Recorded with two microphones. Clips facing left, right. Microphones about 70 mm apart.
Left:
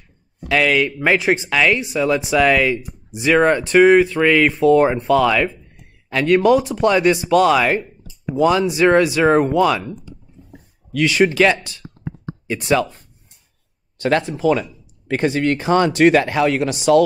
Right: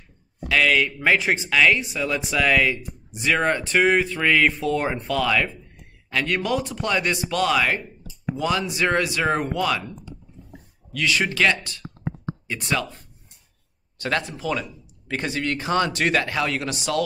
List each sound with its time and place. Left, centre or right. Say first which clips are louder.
0.5 s speech: left 3 dB; centre
11.1 s speech: left 6 dB; left
13.9 s speech: left 7 dB; left
14.3 s speech: left 10 dB; left
15.0 s speech: left 8 dB; left